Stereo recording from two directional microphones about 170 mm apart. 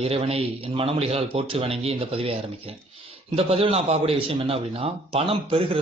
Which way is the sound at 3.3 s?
35° right (ahead or behind).